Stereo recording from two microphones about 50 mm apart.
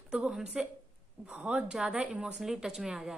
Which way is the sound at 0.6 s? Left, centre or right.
Centre.